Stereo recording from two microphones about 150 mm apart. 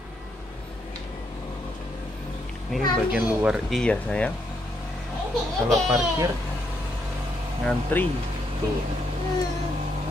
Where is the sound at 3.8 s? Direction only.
5° left (ahead or behind).